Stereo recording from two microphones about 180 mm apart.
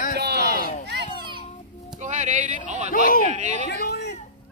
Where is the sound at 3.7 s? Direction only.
65° left (ahead or behind).